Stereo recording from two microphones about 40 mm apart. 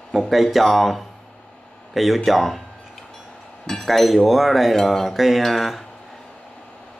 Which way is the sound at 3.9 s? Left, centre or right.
Centre.